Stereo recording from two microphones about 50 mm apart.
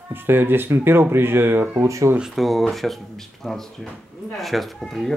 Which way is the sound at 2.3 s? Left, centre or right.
Centre.